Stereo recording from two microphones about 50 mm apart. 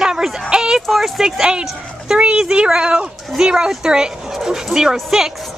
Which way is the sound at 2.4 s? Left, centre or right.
Centre.